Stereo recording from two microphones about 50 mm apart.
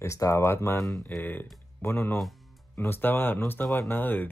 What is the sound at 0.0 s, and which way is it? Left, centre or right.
Speech, left.